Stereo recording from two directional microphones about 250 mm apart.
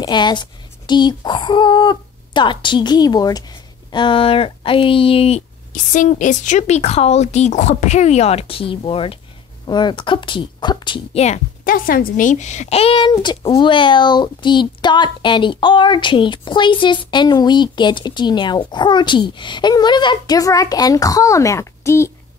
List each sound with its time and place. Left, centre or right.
0.0 s speech: centre